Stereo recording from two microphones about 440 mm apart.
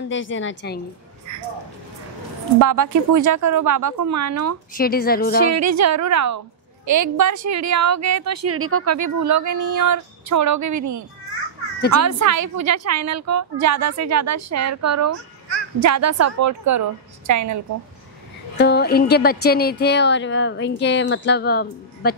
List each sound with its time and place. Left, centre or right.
0.1 s speech: left
2.6 s speech: right
4.7 s speech: centre
5.5 s speech: right
18.6 s speech: left